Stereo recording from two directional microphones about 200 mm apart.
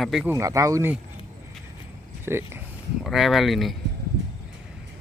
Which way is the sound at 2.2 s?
10° right (ahead or behind).